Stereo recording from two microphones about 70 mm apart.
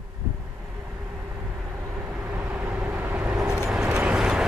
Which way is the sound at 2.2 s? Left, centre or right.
Right.